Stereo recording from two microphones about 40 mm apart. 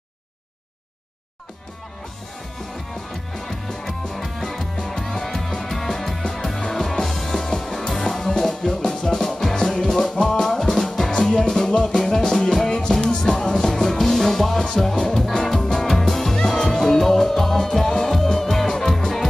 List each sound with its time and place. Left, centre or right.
3.1 s music: centre